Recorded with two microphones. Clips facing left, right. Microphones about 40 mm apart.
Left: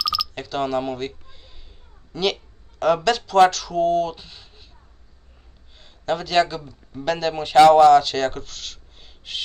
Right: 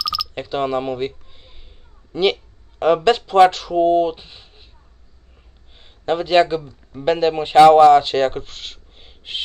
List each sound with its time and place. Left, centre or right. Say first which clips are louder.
0.0 s a sound: even; centre
0.3 s speech: right 3 dB; centre
5.8 s speech: right 4 dB; right